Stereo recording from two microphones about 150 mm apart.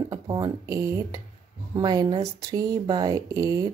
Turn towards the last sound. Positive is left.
turn(degrees=-25)  # may be behind; listen again after turning